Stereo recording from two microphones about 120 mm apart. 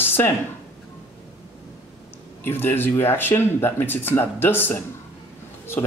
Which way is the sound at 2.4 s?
20° left (ahead or behind).